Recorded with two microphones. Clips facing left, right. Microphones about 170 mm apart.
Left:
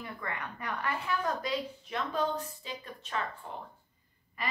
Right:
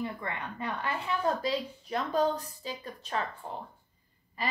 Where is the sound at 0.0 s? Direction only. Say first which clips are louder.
Right 4 dB; 25° right (ahead or behind).